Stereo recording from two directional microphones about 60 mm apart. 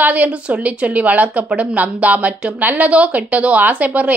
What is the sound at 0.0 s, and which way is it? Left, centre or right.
Speech, right.